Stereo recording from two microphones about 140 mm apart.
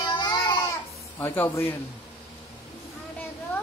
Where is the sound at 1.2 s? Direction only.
15° left (ahead or behind).